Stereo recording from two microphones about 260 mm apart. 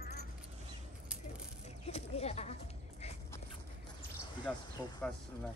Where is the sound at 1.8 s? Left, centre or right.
Left.